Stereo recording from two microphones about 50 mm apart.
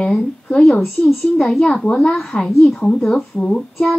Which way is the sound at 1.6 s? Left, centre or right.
Left.